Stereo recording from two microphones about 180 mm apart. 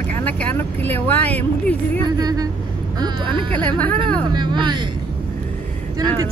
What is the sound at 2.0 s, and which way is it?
Speech, 20° right (ahead or behind).